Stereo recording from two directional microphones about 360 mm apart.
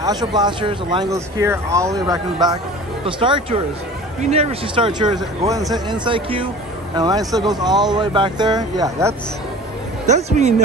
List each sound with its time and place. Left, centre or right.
0.0 s speech: centre